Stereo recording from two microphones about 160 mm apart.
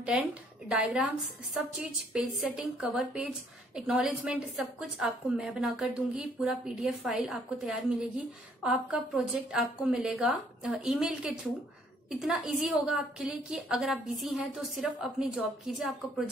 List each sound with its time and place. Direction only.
0.0 s a woman's voice: 5° right (ahead or behind)